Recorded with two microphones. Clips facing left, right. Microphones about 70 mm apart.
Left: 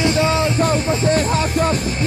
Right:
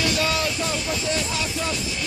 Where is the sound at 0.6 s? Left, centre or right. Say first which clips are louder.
Left 9 dB; left.